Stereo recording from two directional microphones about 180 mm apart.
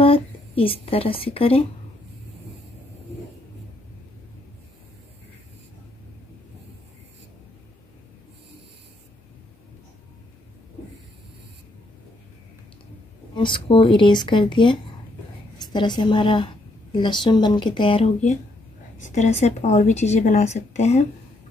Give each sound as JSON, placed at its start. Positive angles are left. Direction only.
{"t": 0.0, "sound": "a woman's voice", "side_deg": 30}
{"t": 13.3, "sound": "speech", "side_deg": 25}